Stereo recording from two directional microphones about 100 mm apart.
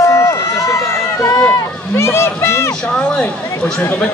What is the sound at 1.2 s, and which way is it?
Speech, 30° left (ahead or behind).